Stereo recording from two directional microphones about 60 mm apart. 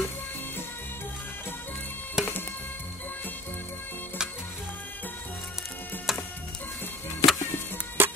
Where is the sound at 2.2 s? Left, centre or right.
Centre.